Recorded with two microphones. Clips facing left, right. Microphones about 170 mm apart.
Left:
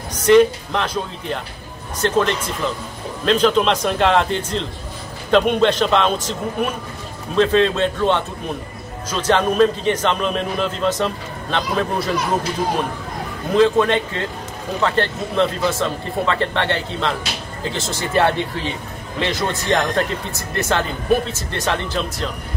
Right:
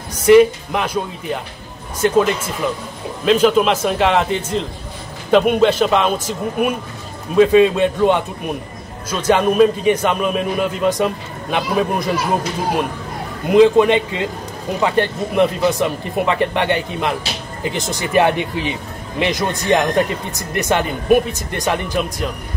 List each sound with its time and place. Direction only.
0.1 s a man's voice: 10° right (ahead or behind)
13.5 s speech: 15° right (ahead or behind)